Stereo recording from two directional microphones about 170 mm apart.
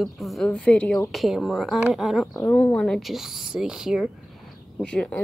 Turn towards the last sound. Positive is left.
turn(degrees=5)  # may be behind; listen again after turning